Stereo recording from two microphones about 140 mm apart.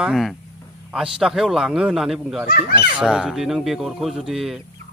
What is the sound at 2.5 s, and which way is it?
Speech, 90° left.